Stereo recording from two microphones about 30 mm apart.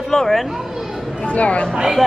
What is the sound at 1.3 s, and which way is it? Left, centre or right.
Speech, left.